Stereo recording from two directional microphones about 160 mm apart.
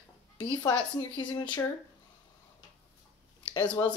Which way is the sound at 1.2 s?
30° left (ahead or behind).